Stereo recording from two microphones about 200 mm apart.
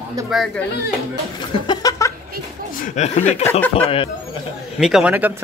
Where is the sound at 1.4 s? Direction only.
20° left (ahead or behind).